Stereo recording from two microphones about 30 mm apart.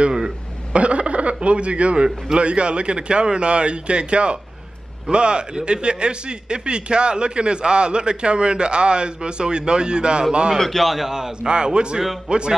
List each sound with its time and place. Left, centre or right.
0.7 s cough: right
1.4 s a man's voice: right
10.6 s a man's voice: centre
11.1 s a man's voice: centre
11.4 s a man's voice: right